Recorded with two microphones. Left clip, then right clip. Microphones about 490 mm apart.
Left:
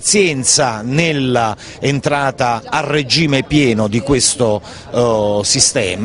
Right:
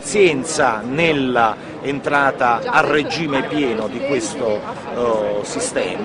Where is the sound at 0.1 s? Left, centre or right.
Left.